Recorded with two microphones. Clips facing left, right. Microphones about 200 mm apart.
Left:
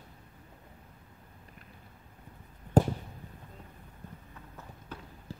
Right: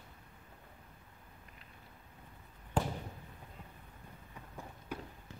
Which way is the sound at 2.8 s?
40° left (ahead or behind).